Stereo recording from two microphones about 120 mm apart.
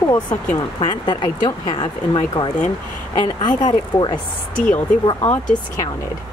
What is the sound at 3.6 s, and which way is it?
Speech, 40° left (ahead or behind).